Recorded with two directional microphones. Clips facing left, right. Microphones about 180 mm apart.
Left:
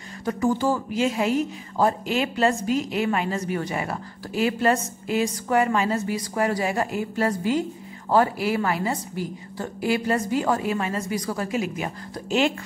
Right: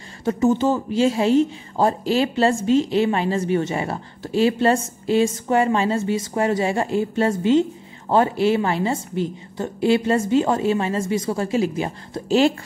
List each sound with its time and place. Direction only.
0.2 s speech: 25° right (ahead or behind)